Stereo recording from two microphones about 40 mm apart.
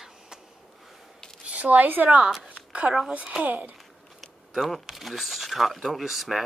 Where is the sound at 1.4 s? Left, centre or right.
Right.